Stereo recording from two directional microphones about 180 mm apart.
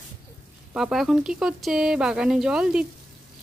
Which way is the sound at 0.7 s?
Centre (ahead or behind).